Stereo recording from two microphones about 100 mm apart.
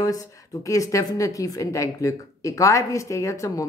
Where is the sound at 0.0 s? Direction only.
35° left (ahead or behind).